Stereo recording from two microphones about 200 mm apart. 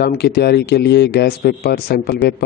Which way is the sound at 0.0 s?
55° left (ahead or behind).